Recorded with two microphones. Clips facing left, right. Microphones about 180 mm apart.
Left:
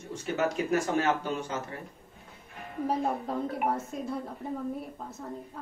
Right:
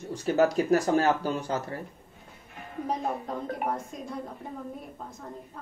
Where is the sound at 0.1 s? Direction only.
35° right (ahead or behind).